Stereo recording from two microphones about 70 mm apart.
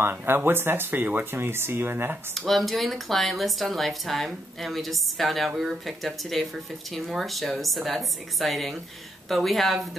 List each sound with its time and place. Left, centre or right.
0.0 s speech: right
2.3 s speech: centre